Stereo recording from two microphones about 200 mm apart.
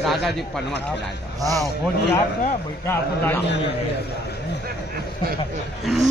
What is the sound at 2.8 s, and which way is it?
Speech, 10° left (ahead or behind).